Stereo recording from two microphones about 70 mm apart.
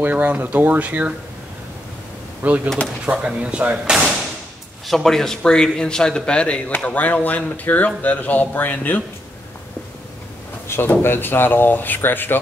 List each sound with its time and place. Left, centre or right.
0.0 s speech: right
2.4 s speech: right
4.8 s speech: centre; by 9.0 s left
10.7 s speech: left